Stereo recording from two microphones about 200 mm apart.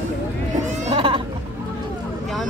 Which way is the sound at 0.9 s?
25° right (ahead or behind).